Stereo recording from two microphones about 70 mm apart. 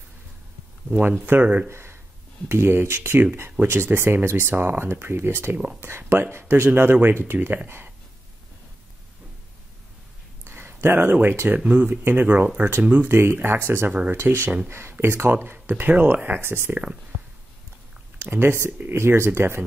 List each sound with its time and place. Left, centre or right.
1.2 s speech: right
1.7 s speech: right
10.4 s speech: right
12.0 s speech: right
13.7 s speech: right
16.7 s speech: centre
18.2 s speech: right